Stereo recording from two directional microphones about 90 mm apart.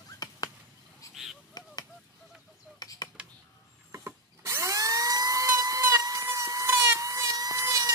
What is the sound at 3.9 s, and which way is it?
Drill, 30° right (ahead or behind).